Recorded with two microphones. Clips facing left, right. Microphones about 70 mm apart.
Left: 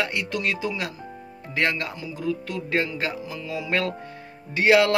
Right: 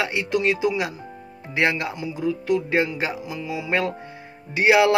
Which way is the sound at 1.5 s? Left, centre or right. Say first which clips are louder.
Right 3 dB; centre.